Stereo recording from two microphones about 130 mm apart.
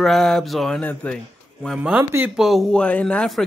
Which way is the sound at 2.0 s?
20° right (ahead or behind).